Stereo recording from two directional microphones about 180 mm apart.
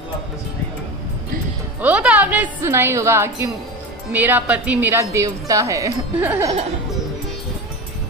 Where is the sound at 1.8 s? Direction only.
5° right (ahead or behind).